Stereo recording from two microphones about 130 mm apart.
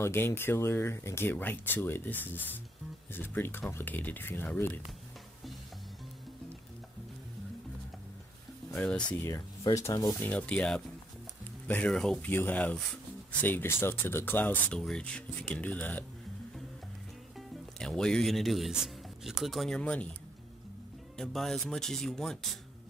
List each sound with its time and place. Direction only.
0.0 s speech: 20° left (ahead or behind)
8.7 s speech: 10° left (ahead or behind)
9.1 s speech: 25° left (ahead or behind)
10.2 s speech: 10° left (ahead or behind)
12.3 s speech: 15° left (ahead or behind)
17.4 s speech: 5° left (ahead or behind)
21.2 s speech: centre (ahead or behind)